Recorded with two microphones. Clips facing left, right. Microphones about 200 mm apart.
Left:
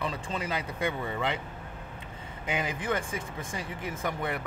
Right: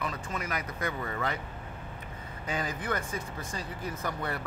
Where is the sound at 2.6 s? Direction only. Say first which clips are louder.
Left 2 dB; 25° left (ahead or behind).